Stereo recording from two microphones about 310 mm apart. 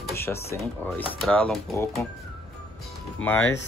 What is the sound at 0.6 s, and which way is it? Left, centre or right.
Speech, centre.